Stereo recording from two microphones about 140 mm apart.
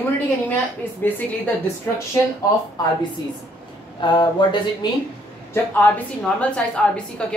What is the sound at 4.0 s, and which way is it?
Speech, 35° left (ahead or behind).